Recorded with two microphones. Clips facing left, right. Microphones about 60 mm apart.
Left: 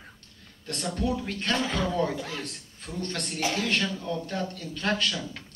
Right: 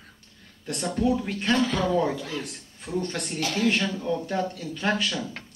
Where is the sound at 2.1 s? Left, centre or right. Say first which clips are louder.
Right 2 dB; centre.